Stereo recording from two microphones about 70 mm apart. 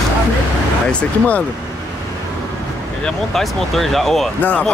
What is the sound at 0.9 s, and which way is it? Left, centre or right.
Speech, centre.